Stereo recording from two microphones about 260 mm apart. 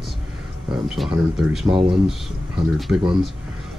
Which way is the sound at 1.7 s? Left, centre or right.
Right.